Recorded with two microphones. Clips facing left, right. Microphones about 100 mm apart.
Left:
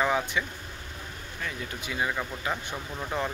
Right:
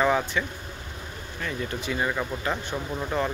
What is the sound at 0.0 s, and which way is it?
Speech, 5° left (ahead or behind).